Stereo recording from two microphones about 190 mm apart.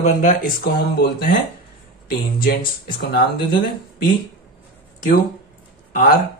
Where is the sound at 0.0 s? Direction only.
45° left (ahead or behind).